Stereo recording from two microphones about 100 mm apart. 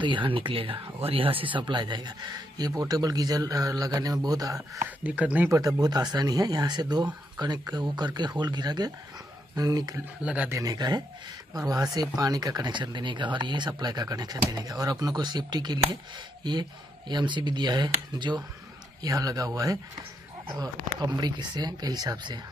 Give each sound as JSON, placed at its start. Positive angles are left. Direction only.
{"t": 0.0, "sound": "speech", "side_deg": -55}
{"t": 5.0, "sound": "speech", "side_deg": -15}
{"t": 5.5, "sound": "speech", "side_deg": -35}
{"t": 10.2, "sound": "speech", "side_deg": -15}
{"t": 10.5, "sound": "speech", "side_deg": -40}